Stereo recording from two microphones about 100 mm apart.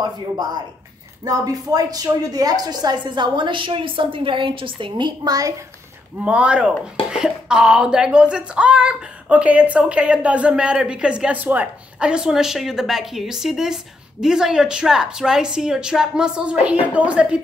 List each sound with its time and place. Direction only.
0.0 s a woman's voice: 40° right (ahead or behind)
6.2 s speech: 10° right (ahead or behind)